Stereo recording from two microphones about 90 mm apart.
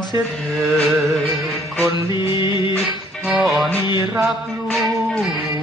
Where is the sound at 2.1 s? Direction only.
65° left (ahead or behind).